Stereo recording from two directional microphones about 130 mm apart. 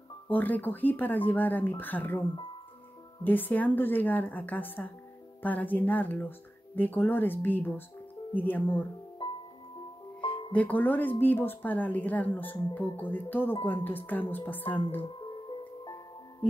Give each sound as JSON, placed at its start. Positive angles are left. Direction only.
{"t": 0.3, "sound": "speech", "side_deg": 15}
{"t": 3.3, "sound": "speech", "side_deg": 15}
{"t": 9.2, "sound": "music", "side_deg": 35}
{"t": 10.5, "sound": "speech", "side_deg": 10}